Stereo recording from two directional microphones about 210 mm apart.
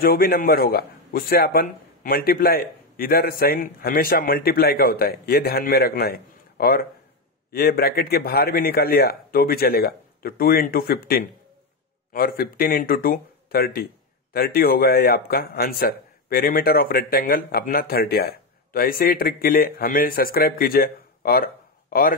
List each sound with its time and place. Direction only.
0.0 s a man's voice: 45° left (ahead or behind)